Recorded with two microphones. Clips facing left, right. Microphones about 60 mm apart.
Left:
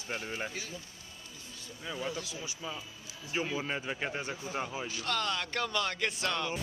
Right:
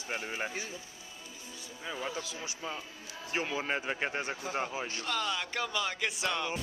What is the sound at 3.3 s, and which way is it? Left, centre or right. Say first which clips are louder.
Speech: right 1 dB; centre.